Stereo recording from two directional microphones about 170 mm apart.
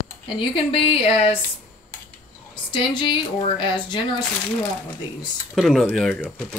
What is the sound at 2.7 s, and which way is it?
Speech, 30° left (ahead or behind).